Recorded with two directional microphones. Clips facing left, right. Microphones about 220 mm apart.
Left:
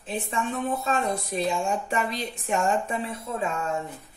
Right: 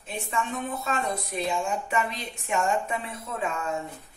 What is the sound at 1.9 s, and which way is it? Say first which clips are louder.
A woman's voice: left 1 dB; 35° left (ahead or behind).